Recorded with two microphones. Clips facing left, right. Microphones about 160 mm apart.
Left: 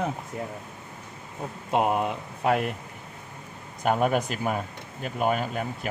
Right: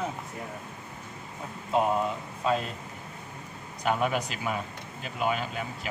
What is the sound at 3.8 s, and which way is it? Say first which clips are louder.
Speech: left 4 dB; 45° left (ahead or behind).